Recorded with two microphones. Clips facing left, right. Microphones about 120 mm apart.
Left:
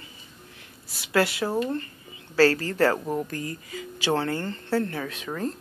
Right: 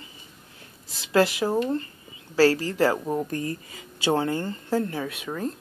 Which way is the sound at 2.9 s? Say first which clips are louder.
Right 1 dB; centre (ahead or behind).